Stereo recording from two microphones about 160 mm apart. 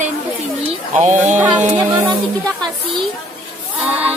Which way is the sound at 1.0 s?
45° right (ahead or behind).